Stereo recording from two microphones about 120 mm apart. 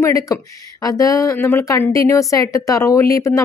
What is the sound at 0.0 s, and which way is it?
Speech, 30° left (ahead or behind).